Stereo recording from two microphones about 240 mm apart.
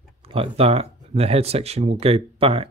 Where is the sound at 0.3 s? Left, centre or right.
Right.